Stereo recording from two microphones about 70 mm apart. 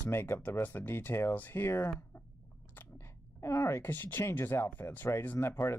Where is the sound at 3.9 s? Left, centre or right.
Left.